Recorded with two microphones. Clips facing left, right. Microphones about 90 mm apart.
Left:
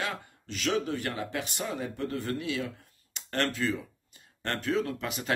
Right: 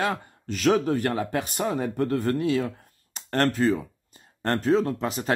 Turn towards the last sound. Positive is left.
turn(degrees=-35)  # may be behind; listen again after turning